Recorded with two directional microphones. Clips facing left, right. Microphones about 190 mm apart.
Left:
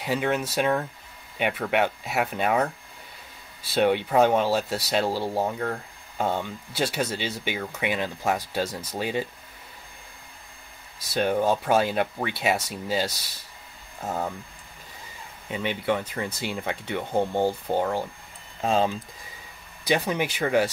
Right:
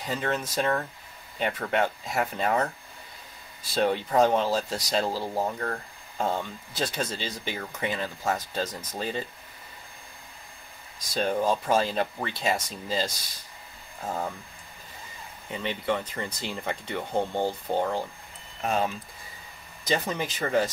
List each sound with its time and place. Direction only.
0.0 s speech: 10° left (ahead or behind)
3.7 s speech: 5° left (ahead or behind)
11.0 s speech: 5° left (ahead or behind)
15.5 s speech: 10° left (ahead or behind)
18.6 s speech: 25° left (ahead or behind)
19.8 s speech: 10° left (ahead or behind)